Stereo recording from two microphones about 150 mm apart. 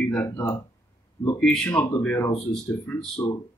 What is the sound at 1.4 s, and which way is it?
A man's voice, 5° left (ahead or behind).